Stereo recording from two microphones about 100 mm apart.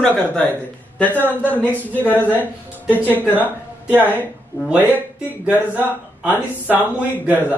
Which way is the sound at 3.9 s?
20° right (ahead or behind).